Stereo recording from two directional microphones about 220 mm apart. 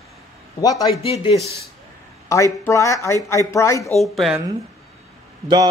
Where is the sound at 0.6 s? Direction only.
15° left (ahead or behind).